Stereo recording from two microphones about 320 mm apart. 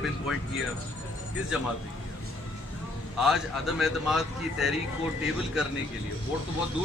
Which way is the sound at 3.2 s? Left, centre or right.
Centre.